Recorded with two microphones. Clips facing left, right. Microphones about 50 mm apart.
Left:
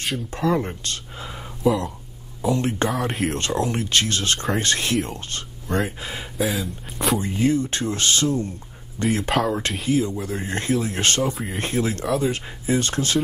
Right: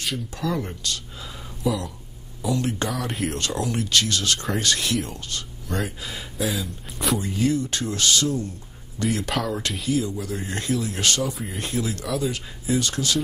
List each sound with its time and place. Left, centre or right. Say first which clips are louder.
0.3 s speech: left 8 dB; left
3.1 s speech: left 3 dB; centre
3.3 s speech: left 3 dB; left
6.5 s speech: left 2 dB; centre
7.2 s speech: left 2 dB; left